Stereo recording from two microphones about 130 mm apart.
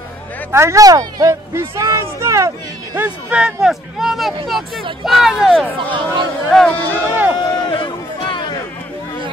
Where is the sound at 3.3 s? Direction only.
10° right (ahead or behind).